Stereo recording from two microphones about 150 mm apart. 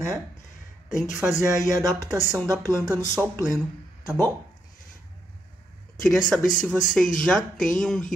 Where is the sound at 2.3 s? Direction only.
20° right (ahead or behind).